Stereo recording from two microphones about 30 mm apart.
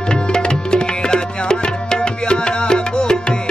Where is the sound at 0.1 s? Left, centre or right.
Left.